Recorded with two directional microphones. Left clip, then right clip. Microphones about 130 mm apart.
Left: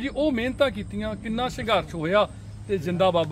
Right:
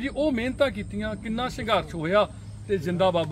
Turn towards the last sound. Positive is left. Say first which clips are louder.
# left 1 dB
turn(degrees=30)  # may be behind; listen again after turning